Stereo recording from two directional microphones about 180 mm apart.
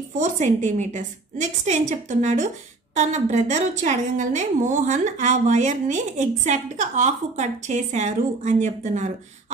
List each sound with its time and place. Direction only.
0.2 s a woman's voice: 40° right (ahead or behind)